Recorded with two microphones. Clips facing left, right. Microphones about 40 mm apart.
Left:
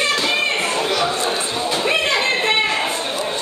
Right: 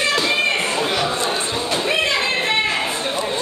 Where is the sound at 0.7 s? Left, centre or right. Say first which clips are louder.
Left 1 dB; right.